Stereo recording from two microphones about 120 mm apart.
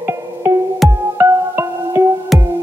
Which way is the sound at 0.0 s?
20° right (ahead or behind).